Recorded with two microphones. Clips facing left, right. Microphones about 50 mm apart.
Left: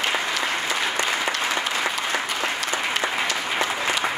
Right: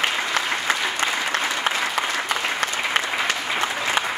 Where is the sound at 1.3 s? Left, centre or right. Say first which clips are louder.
Right 1 dB; right.